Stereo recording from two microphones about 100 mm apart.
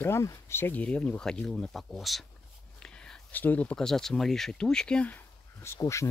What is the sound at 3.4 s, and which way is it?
Speech, 15° left (ahead or behind).